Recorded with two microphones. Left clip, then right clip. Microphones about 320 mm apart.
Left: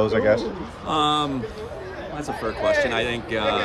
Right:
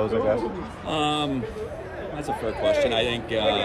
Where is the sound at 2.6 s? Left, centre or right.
Left.